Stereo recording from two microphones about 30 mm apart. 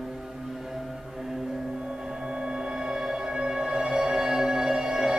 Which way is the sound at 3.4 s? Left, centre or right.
Right.